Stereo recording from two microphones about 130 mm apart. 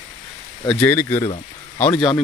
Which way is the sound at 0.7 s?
15° left (ahead or behind).